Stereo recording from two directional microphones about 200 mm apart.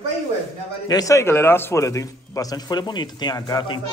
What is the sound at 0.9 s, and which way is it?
A man's voice, 15° left (ahead or behind).